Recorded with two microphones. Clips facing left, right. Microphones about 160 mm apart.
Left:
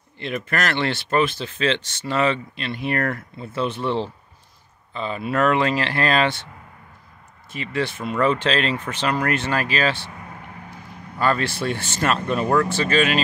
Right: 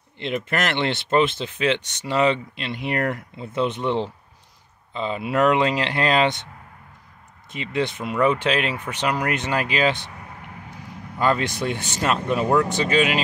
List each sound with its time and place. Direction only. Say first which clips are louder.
0.2 s speech: right 1 dB; 20° right (ahead or behind)
7.5 s speech: right 1 dB; 20° right (ahead or behind)
11.1 s speech: even; 15° right (ahead or behind)